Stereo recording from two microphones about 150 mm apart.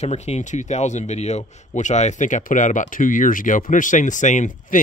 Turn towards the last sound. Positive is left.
turn(degrees=55)  # may be behind; listen again after turning